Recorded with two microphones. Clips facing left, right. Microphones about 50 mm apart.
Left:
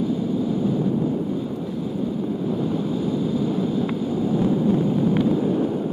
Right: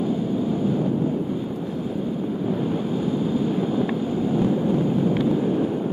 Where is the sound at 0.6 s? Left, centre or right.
Right.